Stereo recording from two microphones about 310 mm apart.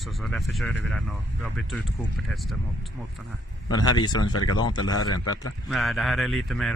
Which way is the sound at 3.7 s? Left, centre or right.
Centre.